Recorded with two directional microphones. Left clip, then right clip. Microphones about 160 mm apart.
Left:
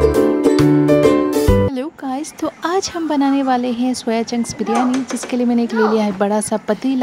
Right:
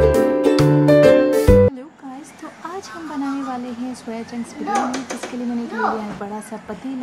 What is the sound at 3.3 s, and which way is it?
Speech, 50° left (ahead or behind).